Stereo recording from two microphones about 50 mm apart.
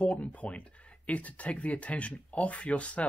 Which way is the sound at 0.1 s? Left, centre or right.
Left.